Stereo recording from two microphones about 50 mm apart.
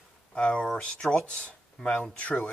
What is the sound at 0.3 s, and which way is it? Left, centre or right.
Speech, left.